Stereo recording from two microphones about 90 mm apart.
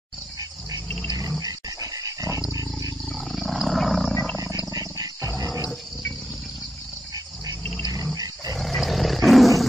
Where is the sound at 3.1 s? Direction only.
Centre (ahead or behind).